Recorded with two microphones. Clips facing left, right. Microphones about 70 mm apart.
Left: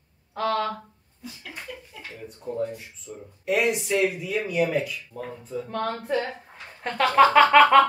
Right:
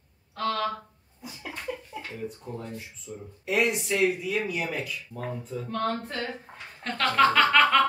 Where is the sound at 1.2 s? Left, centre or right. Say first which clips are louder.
Left 1 dB; centre.